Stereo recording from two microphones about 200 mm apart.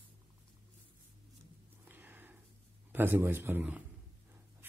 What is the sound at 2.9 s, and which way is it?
Speech, 10° right (ahead or behind).